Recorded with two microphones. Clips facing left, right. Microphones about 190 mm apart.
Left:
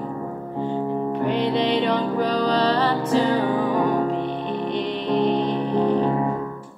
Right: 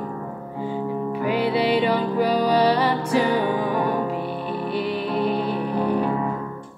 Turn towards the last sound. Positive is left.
turn(degrees=-10)  # may be behind; listen again after turning